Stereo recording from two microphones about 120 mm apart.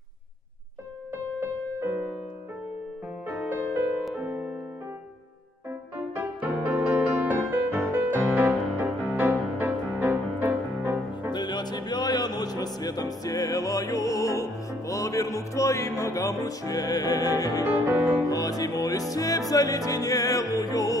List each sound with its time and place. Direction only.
1.4 s music: 20° right (ahead or behind)
3.3 s music: 15° right (ahead or behind)
6.1 s music: 20° right (ahead or behind)
8.4 s music: 15° right (ahead or behind)
11.3 s music: 35° left (ahead or behind)
17.6 s music: 20° right (ahead or behind)
17.9 s music: centre (ahead or behind)
18.3 s music: 30° left (ahead or behind)